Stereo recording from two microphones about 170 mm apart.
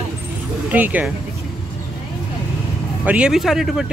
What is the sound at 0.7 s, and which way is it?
Speech, 10° right (ahead or behind).